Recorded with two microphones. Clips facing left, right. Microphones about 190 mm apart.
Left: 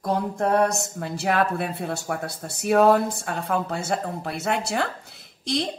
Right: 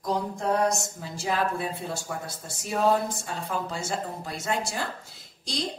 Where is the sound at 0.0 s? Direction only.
60° left (ahead or behind).